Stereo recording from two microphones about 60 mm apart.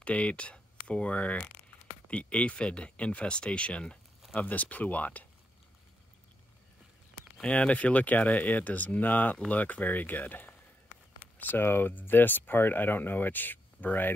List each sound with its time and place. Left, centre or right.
0.0 s speech: left
7.4 s speech: left